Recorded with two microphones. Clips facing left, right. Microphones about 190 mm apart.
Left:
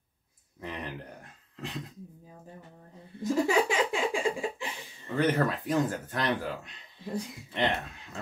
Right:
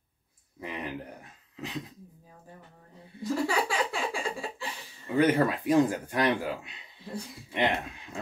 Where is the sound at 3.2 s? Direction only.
20° left (ahead or behind).